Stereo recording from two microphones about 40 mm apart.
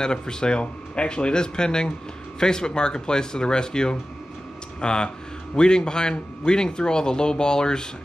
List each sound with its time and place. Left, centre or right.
0.0 s a man's voice: centre